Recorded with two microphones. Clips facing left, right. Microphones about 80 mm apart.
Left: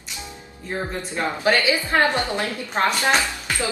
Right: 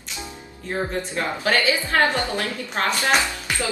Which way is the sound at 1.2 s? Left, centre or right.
Left.